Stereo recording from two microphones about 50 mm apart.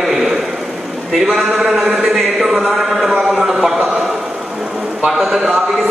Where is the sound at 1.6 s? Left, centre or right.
Centre.